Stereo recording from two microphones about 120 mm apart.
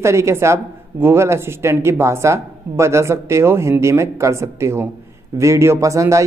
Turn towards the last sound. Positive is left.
turn(degrees=-25)  # may be behind; listen again after turning